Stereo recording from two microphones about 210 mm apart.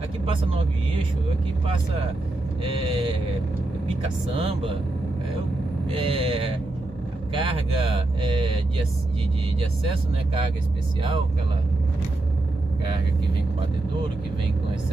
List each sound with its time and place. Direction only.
2.6 s speech: 25° right (ahead or behind)
4.4 s speech: 25° right (ahead or behind)
5.9 s speech: 25° right (ahead or behind)
9.8 s speech: 25° right (ahead or behind)